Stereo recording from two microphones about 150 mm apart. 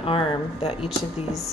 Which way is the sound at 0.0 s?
40° left (ahead or behind).